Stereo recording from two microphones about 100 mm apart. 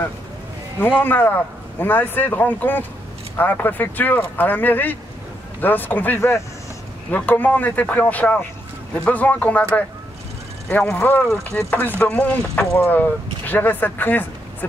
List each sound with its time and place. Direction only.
0.7 s speech: 15° left (ahead or behind)
10.9 s speech: 20° left (ahead or behind)